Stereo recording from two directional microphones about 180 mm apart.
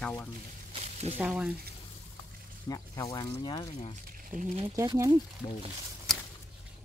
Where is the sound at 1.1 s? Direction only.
5° right (ahead or behind).